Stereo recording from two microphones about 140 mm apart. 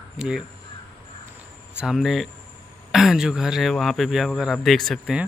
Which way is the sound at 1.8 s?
5° right (ahead or behind).